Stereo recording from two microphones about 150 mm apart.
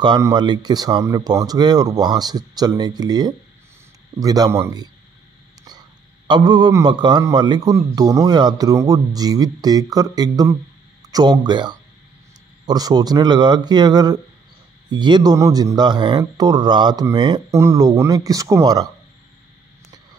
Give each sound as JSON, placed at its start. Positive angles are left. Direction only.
{"t": 0.0, "sound": "a man's voice", "side_deg": -30}